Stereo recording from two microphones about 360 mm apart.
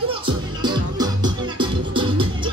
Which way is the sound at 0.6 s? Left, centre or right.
Centre.